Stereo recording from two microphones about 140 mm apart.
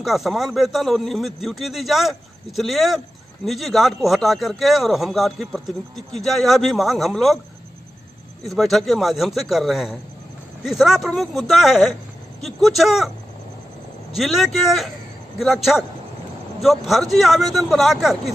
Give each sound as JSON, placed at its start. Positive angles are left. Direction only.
{"t": 0.0, "sound": "a man's voice", "side_deg": 0}
{"t": 8.5, "sound": "a man's voice", "side_deg": 0}
{"t": 14.1, "sound": "a man's voice", "side_deg": 0}